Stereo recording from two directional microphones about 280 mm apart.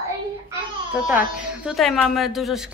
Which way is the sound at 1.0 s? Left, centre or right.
Centre.